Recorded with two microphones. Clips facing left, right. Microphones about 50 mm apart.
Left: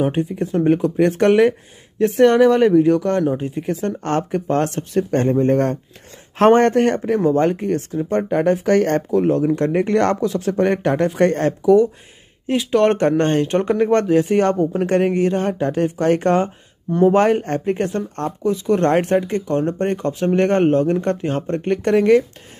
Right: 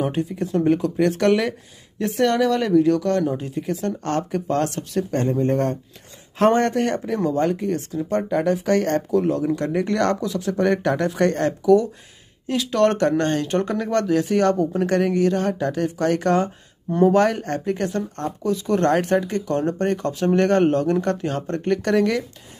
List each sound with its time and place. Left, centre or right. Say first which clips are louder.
0.0 s speech: left 4 dB; left
9.1 s speech: left 3 dB; left